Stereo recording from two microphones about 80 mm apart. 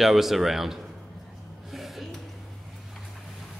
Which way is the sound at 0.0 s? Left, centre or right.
Centre.